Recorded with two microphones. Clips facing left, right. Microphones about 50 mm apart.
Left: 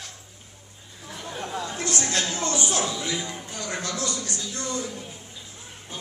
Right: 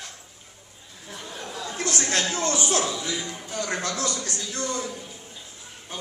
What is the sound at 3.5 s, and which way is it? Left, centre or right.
Speech, right.